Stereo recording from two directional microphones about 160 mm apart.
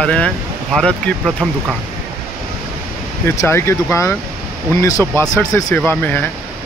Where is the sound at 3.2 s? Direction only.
15° left (ahead or behind).